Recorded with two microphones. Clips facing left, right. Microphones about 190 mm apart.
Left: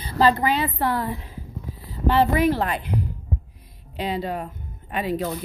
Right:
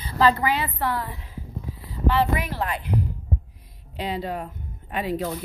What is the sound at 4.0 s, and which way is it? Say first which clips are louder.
Speech: left 2 dB; 25° left (ahead or behind).